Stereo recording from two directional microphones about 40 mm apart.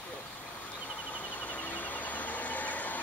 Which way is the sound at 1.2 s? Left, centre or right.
Left.